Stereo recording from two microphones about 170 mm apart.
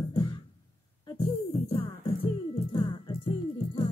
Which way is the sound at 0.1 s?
25° left (ahead or behind).